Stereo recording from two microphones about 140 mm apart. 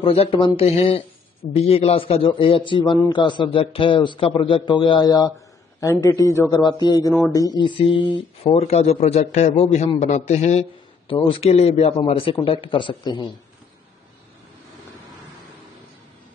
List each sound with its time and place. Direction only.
0.0 s a man's voice: 40° left (ahead or behind)